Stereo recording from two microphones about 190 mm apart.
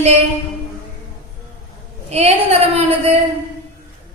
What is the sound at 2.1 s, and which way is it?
A woman's voice, 35° right (ahead or behind).